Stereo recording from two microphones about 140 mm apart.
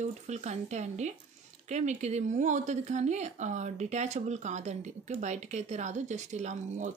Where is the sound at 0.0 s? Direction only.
55° right (ahead or behind).